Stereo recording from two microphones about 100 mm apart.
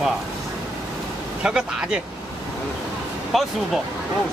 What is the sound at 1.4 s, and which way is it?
Speech, 5° right (ahead or behind).